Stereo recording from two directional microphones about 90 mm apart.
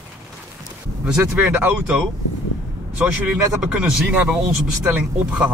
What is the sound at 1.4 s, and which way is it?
Speech, 20° right (ahead or behind).